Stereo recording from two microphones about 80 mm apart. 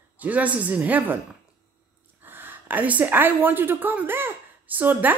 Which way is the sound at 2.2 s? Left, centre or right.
Right.